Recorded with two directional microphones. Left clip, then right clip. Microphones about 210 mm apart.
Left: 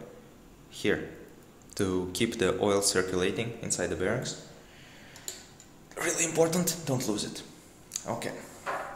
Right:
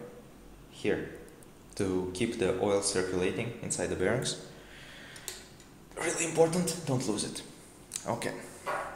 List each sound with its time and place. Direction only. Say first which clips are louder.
0.8 s speech: left 2 dB; 20° left (ahead or behind); by 4.2 s 5° left (ahead or behind)
5.9 s speech: even; 10° left (ahead or behind)
7.9 s speech: even; 5° right (ahead or behind)